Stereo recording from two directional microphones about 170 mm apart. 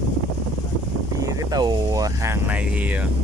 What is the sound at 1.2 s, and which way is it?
Speech, 20° right (ahead or behind).